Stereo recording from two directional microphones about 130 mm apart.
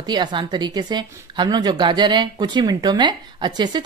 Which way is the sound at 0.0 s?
35° right (ahead or behind).